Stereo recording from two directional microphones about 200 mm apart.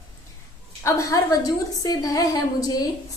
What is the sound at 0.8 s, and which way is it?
A woman's voice, 15° left (ahead or behind).